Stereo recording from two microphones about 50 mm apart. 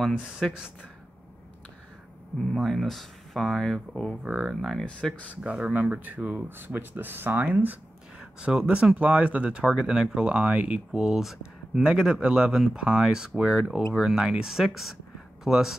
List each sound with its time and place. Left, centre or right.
0.1 s speech: centre
2.5 s speech: centre
5.4 s speech: right
7.4 s speech: right
8.2 s speech: centre
10.9 s speech: centre